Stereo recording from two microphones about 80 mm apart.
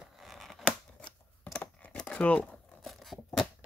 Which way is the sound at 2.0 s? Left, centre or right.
Centre.